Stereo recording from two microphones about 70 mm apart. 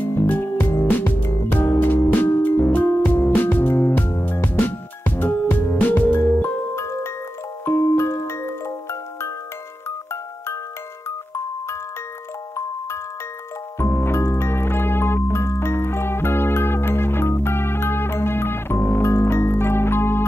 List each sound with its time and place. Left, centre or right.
0.0 s music: left
11.1 s music: left
13.7 s music: left